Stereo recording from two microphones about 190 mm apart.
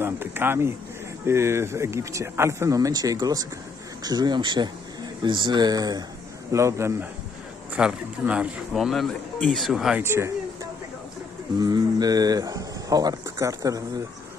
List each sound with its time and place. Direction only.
0.0 s speech: 10° right (ahead or behind)
10.0 s a sound: 15° right (ahead or behind)
11.6 s speech: 20° right (ahead or behind)